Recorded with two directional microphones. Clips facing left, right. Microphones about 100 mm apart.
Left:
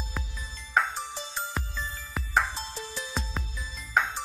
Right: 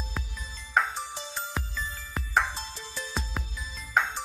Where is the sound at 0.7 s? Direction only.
Centre (ahead or behind).